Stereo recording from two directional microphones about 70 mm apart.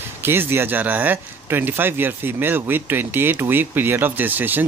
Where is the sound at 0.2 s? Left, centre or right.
Right.